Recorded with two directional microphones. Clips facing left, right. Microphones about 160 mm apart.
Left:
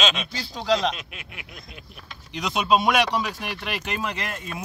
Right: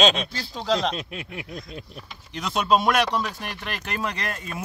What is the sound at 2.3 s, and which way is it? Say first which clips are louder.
Speech: even; 15° left (ahead or behind).